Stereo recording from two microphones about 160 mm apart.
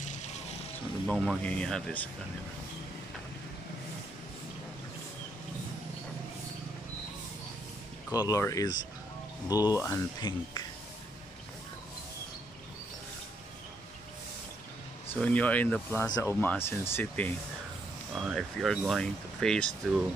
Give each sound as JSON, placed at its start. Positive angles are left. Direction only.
{"t": 0.0, "sound": "vehicle", "side_deg": 45}
{"t": 1.0, "sound": "speech", "side_deg": 0}
{"t": 8.1, "sound": "speech", "side_deg": 20}
{"t": 15.1, "sound": "speech", "side_deg": 10}
{"t": 18.1, "sound": "speech", "side_deg": 0}